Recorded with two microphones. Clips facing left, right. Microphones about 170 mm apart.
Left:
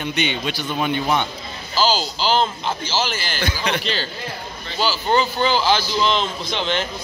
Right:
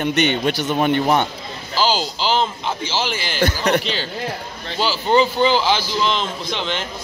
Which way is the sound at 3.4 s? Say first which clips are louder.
Right 6 dB; 45° right (ahead or behind).